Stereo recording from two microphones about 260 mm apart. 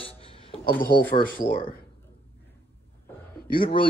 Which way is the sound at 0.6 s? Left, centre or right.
Left.